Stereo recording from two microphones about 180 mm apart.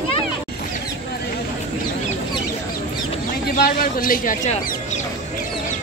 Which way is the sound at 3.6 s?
50° left (ahead or behind).